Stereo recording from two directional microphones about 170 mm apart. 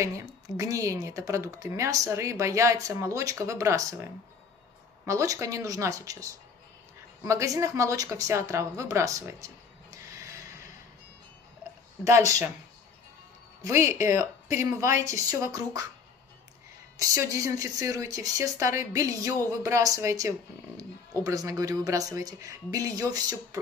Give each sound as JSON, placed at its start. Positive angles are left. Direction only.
{"t": 0.0, "sound": "speech", "side_deg": -20}
{"t": 12.0, "sound": "speech", "side_deg": -20}
{"t": 13.7, "sound": "speech", "side_deg": -15}
{"t": 17.0, "sound": "speech", "side_deg": -20}